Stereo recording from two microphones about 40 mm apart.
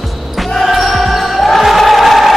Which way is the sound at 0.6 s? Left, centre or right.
Centre.